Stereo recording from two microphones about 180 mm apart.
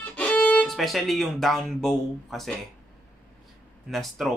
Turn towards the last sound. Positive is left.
turn(degrees=0)  # may be behind; listen again after turning